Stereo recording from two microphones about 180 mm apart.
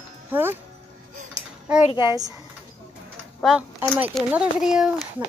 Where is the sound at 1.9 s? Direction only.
25° left (ahead or behind).